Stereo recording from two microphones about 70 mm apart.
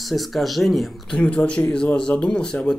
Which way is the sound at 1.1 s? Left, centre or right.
Centre.